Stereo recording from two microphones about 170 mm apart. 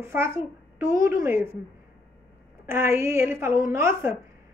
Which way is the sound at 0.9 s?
55° left (ahead or behind).